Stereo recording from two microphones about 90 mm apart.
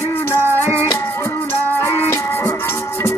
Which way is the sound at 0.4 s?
25° right (ahead or behind).